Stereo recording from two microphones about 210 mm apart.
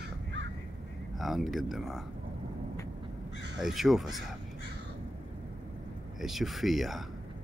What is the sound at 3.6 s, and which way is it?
Speech, centre (ahead or behind).